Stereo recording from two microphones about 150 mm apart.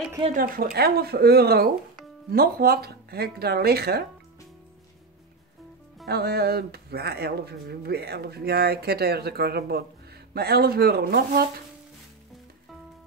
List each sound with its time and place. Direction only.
0.3 s speech: 70° right (ahead or behind); by 4.0 s 90° right
6.0 s speech: 90° right